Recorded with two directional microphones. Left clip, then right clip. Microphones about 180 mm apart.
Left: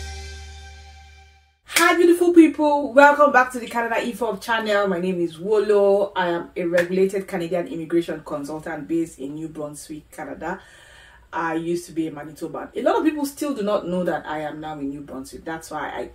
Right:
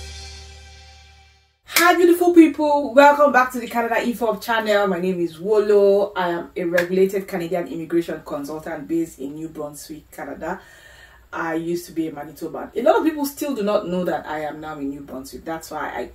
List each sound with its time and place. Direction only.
1.7 s speech: centre (ahead or behind)